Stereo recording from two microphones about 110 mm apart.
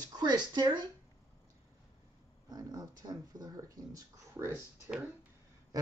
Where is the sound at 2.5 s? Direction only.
35° right (ahead or behind).